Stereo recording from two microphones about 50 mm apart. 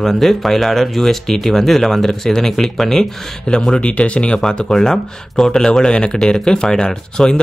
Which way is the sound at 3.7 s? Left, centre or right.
Left.